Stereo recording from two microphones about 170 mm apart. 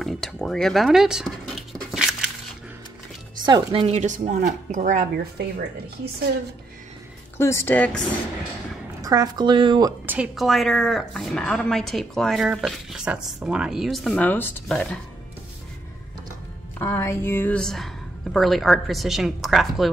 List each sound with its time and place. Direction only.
0.0 s scratch: centre (ahead or behind)
3.4 s a woman's voice: 30° right (ahead or behind); by 5.2 s 50° right (ahead or behind)
7.3 s speech: 15° left (ahead or behind)
9.0 s speech: 20° right (ahead or behind)
10.0 s a woman's voice: 5° right (ahead or behind); by 14.9 s 10° left (ahead or behind)
16.7 s a woman's voice: 15° left (ahead or behind)